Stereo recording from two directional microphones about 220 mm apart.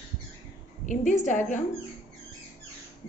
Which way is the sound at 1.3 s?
35° left (ahead or behind).